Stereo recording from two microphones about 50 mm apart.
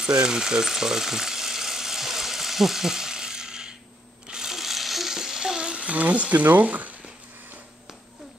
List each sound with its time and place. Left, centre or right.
0.0 s frying: centre
4.3 s stir: centre; by 7.0 s right